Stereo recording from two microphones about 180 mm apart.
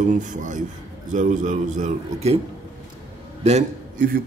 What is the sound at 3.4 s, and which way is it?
Speech, 40° right (ahead or behind).